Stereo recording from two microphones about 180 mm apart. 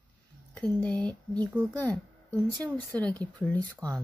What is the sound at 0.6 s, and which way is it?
Speech, 5° left (ahead or behind).